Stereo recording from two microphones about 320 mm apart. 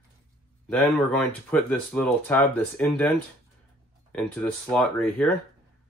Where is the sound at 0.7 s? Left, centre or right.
Centre.